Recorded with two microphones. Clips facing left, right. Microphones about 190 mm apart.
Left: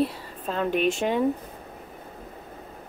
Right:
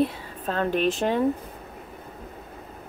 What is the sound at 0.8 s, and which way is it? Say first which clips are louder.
Speech: even; centre (ahead or behind).